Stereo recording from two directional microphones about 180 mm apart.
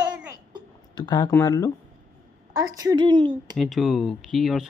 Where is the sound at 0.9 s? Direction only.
25° left (ahead or behind).